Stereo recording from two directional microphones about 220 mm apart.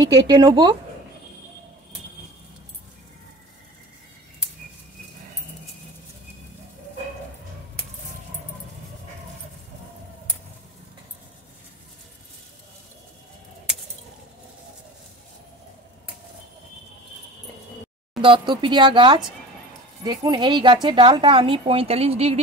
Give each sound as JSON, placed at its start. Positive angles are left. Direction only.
{"t": 0.0, "sound": "speech", "side_deg": -15}
{"t": 18.2, "sound": "speech", "side_deg": -20}